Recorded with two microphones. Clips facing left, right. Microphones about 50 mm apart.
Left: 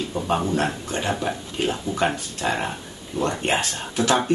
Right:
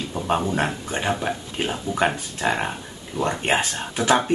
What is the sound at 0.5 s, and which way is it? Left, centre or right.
Speech, centre.